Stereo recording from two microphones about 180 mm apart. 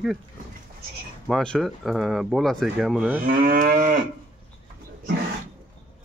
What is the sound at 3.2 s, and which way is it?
Moo, 50° right (ahead or behind).